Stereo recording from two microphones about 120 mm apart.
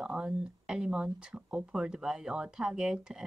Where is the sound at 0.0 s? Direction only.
5° right (ahead or behind).